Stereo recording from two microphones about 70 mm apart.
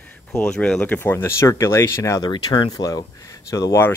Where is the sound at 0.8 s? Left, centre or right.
Left.